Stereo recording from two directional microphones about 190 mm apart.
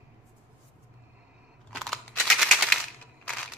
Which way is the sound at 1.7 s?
5° left (ahead or behind).